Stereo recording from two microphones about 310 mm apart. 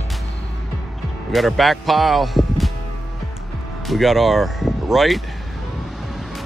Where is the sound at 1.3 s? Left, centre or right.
Centre.